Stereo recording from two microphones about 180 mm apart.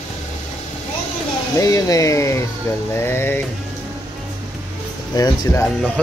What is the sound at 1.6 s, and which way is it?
Speech, 20° left (ahead or behind).